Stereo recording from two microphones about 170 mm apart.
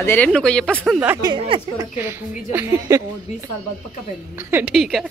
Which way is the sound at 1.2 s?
25° right (ahead or behind).